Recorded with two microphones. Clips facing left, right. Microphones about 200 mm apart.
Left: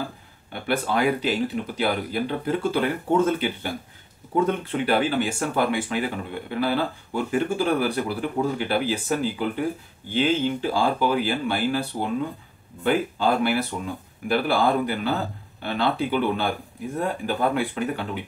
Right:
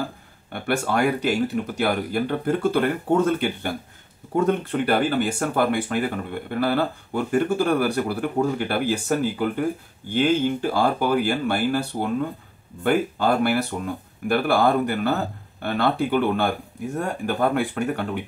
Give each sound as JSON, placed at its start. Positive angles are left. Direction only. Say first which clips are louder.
{"t": 0.5, "sound": "speech", "louder": "right 1 dB", "side_deg": -50}